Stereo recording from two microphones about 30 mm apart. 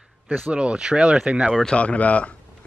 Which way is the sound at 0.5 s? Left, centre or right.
Right.